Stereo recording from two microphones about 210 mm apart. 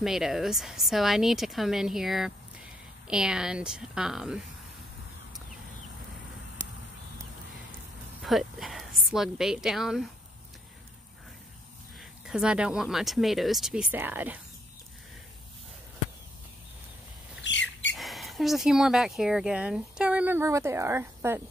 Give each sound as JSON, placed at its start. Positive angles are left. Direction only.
{"t": 0.0, "sound": "speech", "side_deg": 0}
{"t": 8.2, "sound": "a woman's voice", "side_deg": 0}
{"t": 12.0, "sound": "speech", "side_deg": -5}
{"t": 17.4, "sound": "rodents", "side_deg": 60}
{"t": 17.9, "sound": "speech", "side_deg": 0}